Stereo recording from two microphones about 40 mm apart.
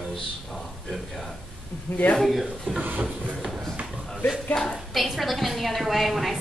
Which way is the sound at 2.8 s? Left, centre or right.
Right.